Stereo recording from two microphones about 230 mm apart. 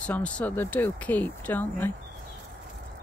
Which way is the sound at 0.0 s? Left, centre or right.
Centre.